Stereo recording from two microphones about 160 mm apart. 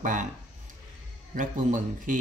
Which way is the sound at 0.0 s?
55° right (ahead or behind).